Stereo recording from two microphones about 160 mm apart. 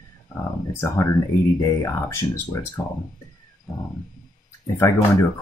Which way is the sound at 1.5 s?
20° left (ahead or behind).